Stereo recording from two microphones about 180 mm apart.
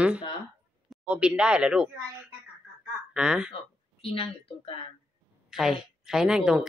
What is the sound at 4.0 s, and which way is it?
Speech, 30° left (ahead or behind).